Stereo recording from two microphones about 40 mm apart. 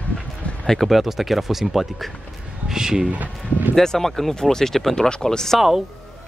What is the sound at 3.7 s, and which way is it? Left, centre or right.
Speech, centre.